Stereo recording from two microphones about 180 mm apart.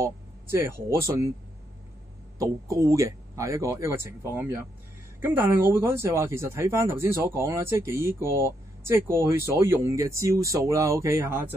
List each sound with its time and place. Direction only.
0.0 s speech: 15° right (ahead or behind)
2.3 s speech: 15° right (ahead or behind)